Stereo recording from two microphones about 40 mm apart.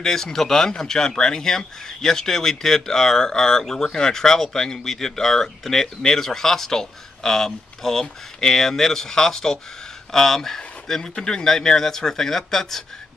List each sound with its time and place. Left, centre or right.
0.0 s a man's voice: centre